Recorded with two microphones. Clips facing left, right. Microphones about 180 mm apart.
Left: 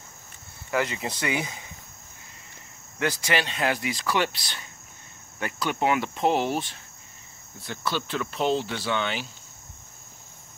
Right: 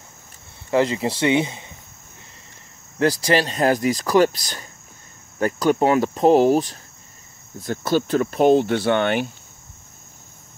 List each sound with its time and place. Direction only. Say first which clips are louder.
0.7 s speech: right 8 dB; 30° right (ahead or behind)
3.0 s speech: right 8 dB; 35° right (ahead or behind); by 9.3 s 55° right (ahead or behind)